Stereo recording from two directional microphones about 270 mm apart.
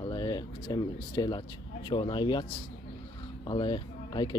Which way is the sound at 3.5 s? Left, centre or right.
Centre.